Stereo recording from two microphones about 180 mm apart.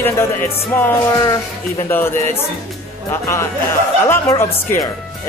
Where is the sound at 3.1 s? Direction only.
15° left (ahead or behind).